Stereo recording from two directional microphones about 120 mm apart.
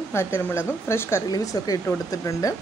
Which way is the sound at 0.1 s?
20° left (ahead or behind).